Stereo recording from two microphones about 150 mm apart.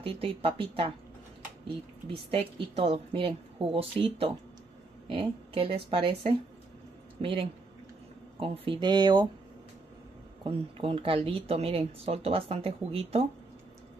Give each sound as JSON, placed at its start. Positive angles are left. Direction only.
{"t": 0.0, "sound": "speech", "side_deg": -40}
{"t": 2.0, "sound": "speech", "side_deg": -40}
{"t": 10.4, "sound": "speech", "side_deg": -40}